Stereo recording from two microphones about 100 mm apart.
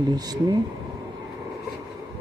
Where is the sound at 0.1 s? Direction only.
40° right (ahead or behind).